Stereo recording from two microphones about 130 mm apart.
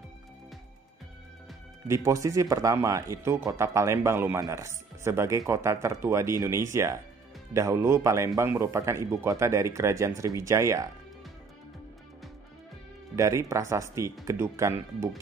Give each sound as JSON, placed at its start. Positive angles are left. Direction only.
{"t": 1.9, "sound": "speech", "side_deg": -25}
{"t": 13.1, "sound": "speech", "side_deg": -20}